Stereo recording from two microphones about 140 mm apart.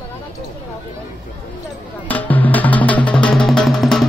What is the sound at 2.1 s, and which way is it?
Music, 10° left (ahead or behind).